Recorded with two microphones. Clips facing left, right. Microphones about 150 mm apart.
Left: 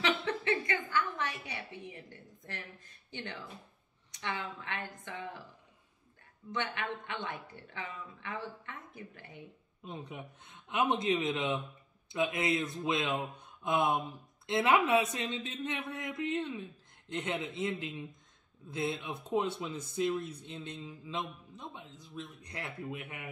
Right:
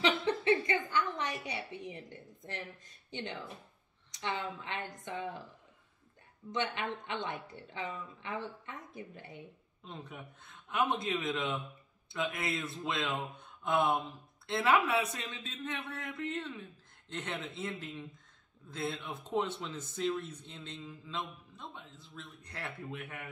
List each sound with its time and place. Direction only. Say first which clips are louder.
0.2 s a sound: right 3 dB; 15° right (ahead or behind)
3.1 s a woman's voice: right 2 dB; 20° right (ahead or behind)
6.5 s a woman's voice: right 1 dB; 15° right (ahead or behind)
9.8 s speech: left 3 dB; 15° left (ahead or behind)